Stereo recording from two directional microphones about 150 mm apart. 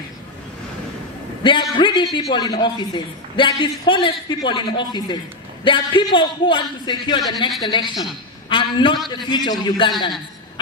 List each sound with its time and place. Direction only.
1.4 s a man's voice: 30° left (ahead or behind)